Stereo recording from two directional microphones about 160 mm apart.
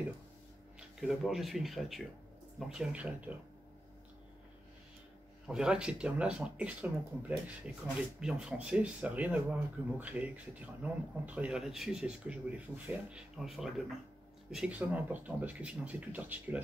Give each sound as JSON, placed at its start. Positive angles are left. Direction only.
{"t": 0.7, "sound": "speech", "side_deg": 0}
{"t": 5.5, "sound": "speech", "side_deg": -5}